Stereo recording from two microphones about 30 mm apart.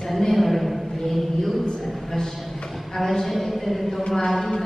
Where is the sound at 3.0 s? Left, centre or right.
Centre.